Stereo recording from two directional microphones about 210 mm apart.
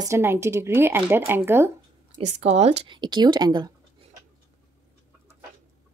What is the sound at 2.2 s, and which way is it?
Speech, 30° right (ahead or behind).